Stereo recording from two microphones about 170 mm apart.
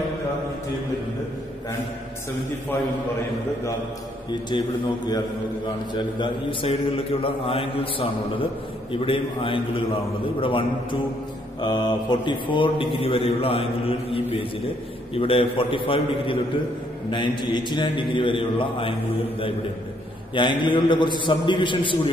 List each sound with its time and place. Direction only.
4.3 s a man's voice: 25° left (ahead or behind)
20.3 s a man's voice: 25° left (ahead or behind)